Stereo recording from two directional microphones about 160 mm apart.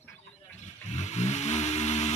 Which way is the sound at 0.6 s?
45° left (ahead or behind).